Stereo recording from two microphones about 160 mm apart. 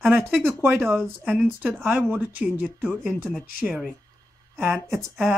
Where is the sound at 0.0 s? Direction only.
5° right (ahead or behind).